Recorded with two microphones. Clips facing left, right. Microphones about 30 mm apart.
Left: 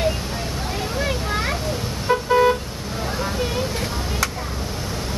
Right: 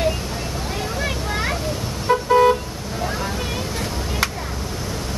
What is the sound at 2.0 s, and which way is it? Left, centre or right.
Car, centre.